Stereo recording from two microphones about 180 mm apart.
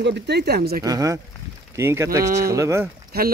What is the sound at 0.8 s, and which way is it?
Speech, 20° right (ahead or behind).